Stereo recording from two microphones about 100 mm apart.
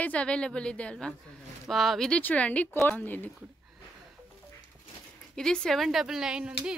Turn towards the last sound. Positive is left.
turn(degrees=-10)  # may be behind; listen again after turning